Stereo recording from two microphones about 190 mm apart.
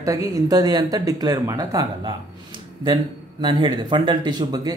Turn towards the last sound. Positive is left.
turn(degrees=-20)  # may be behind; listen again after turning